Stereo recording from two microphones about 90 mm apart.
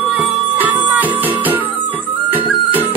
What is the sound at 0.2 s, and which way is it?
Music, 20° right (ahead or behind).